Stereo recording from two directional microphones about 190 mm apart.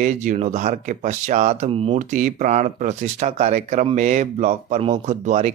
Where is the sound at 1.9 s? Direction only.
40° right (ahead or behind).